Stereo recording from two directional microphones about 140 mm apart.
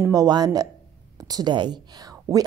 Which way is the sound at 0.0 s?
25° right (ahead or behind).